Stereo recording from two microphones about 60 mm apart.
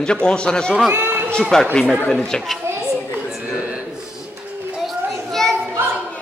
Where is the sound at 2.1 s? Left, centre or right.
Centre.